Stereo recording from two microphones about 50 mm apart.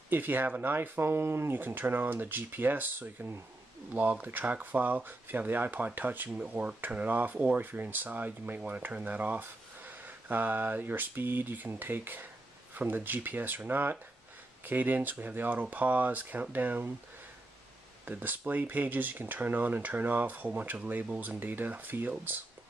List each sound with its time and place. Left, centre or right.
0.1 s speech: right
6.3 s speech: right
18.1 s speech: right